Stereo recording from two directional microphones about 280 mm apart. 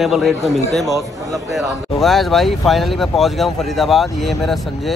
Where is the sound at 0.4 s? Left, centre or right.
Left.